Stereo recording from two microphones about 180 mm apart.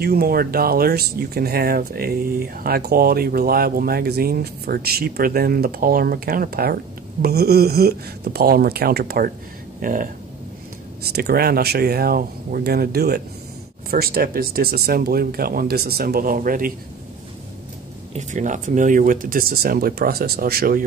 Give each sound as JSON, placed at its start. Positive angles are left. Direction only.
{"t": 0.0, "sound": "speech", "side_deg": -60}
{"t": 11.0, "sound": "speech", "side_deg": -60}
{"t": 18.1, "sound": "speech", "side_deg": -45}